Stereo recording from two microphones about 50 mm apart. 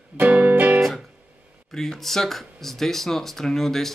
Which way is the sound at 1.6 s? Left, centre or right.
Centre.